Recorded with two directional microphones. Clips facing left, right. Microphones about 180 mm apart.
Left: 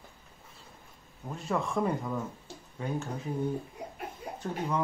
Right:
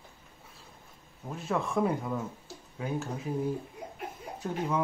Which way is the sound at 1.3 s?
Centre (ahead or behind).